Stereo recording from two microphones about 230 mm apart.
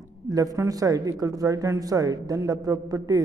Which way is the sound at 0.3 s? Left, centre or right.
Centre.